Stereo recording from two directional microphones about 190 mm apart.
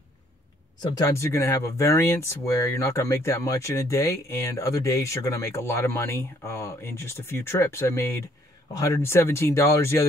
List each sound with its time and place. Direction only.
0.9 s speech: 15° left (ahead or behind)